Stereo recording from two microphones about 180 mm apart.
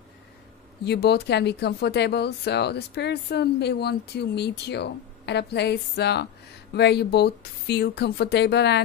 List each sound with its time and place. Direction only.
0.8 s speech: 65° left (ahead or behind)